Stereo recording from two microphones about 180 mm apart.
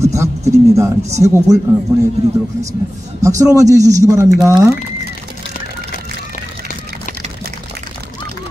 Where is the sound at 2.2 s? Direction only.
40° right (ahead or behind).